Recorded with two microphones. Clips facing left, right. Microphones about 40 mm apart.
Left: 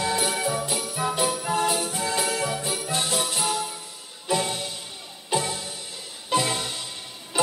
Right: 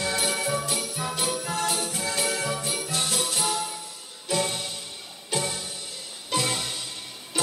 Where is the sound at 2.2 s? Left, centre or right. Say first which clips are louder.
Left 1 dB; centre.